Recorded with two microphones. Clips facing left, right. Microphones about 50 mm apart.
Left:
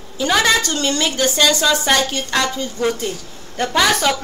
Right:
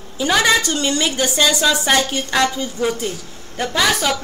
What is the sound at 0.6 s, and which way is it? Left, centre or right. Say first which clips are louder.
A woman's voice: even; right.